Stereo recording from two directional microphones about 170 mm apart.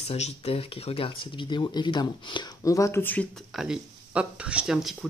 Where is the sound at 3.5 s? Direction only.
5° right (ahead or behind).